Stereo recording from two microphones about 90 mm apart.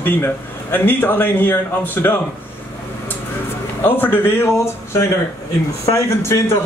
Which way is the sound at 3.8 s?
20° left (ahead or behind).